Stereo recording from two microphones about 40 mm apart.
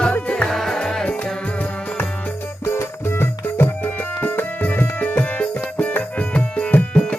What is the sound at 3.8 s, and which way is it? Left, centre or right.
Music, left.